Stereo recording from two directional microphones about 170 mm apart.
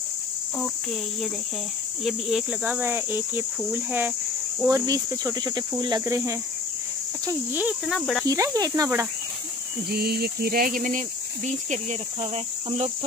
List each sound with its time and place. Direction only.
2.0 s speech: centre (ahead or behind)
4.6 s cricket: 20° right (ahead or behind); by 8.3 s centre (ahead or behind)
8.3 s cricket: 20° right (ahead or behind)
9.8 s speech: 65° right (ahead or behind); by 12.9 s 40° right (ahead or behind)